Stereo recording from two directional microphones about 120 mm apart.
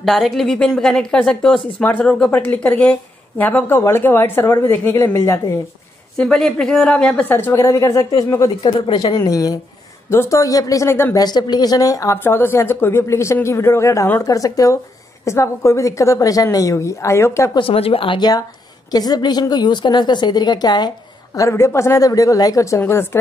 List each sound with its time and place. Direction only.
0.0 s speech: centre (ahead or behind); by 5.4 s 25° left (ahead or behind)
6.1 s speech: 5° left (ahead or behind); by 8.5 s 30° left (ahead or behind)
8.6 s a woman's voice: 40° left (ahead or behind); by 11.1 s 20° left (ahead or behind)
11.1 s a woman's voice: 35° left (ahead or behind)
12.2 s a woman's voice: 20° left (ahead or behind)
17.6 s a woman's voice: 50° left (ahead or behind); by 20.9 s 35° left (ahead or behind)
21.4 s a woman's voice: 25° left (ahead or behind)